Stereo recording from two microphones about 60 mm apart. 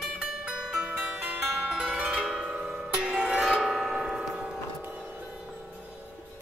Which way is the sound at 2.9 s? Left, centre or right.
Centre.